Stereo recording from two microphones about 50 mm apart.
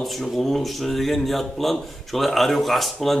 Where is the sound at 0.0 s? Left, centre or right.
Centre.